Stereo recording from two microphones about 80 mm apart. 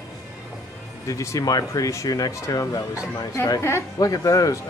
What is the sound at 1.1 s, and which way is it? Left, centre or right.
Speech, left.